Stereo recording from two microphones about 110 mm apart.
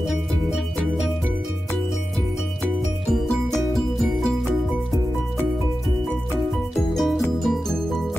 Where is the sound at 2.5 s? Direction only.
Centre (ahead or behind).